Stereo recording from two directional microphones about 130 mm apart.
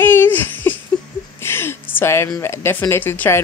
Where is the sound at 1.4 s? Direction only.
20° left (ahead or behind).